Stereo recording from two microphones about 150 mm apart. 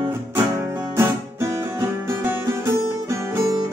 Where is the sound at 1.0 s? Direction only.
15° right (ahead or behind).